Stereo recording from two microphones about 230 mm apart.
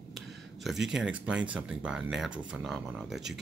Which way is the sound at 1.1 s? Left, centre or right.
Centre.